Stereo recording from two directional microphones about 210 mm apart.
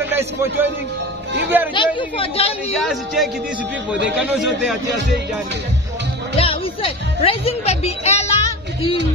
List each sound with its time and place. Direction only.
0.0 s a man's voice: 10° right (ahead or behind)
1.7 s a woman's voice: 25° left (ahead or behind)
2.7 s speech: centre (ahead or behind)
6.3 s speech: 25° left (ahead or behind)